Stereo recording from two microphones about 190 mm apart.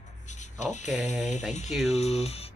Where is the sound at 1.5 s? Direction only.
35° left (ahead or behind).